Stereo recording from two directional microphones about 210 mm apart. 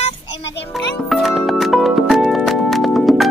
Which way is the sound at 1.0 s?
Centre (ahead or behind).